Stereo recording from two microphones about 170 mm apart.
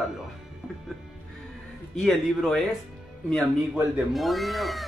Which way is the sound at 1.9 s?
Centre (ahead or behind).